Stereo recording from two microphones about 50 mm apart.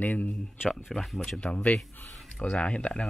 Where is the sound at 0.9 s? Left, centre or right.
Centre.